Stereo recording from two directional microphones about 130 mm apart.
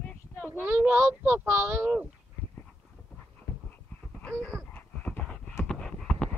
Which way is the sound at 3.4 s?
10° right (ahead or behind).